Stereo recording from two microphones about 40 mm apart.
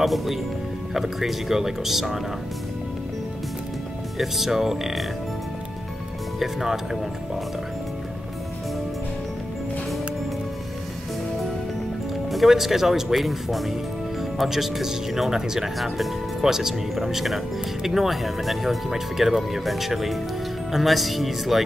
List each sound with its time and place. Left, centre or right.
0.0 s speech: centre
4.2 s speech: centre
6.4 s speech: centre
12.3 s speech: centre